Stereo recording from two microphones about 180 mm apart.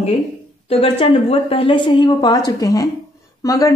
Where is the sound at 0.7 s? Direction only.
35° left (ahead or behind).